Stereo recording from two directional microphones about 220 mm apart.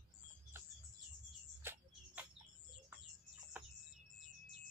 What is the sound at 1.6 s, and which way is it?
Music, 10° right (ahead or behind).